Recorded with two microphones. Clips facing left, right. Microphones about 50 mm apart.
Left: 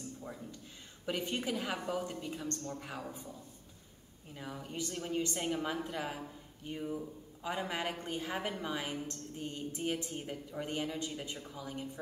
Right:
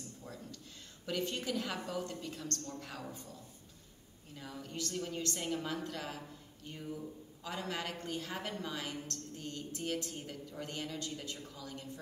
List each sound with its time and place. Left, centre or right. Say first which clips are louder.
0.2 s a man's voice: left 3 dB; centre